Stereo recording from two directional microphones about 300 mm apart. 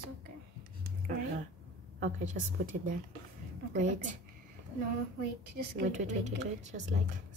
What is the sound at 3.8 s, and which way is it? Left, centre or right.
Speech, right.